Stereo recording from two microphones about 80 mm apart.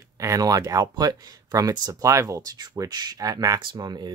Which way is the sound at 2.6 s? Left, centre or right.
Right.